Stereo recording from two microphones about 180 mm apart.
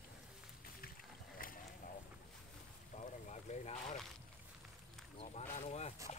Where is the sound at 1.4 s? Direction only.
50° left (ahead or behind).